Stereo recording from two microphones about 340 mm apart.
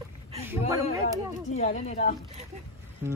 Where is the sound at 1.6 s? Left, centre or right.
Centre.